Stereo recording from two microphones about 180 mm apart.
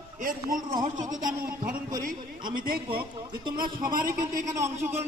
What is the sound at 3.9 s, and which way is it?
Speech, 50° right (ahead or behind).